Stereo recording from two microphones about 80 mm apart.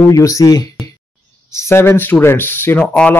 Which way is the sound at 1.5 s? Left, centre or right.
Left.